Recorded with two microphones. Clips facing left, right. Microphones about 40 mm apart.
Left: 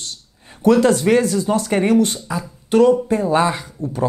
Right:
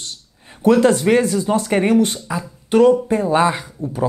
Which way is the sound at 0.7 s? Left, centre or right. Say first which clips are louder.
Right 1 dB; right.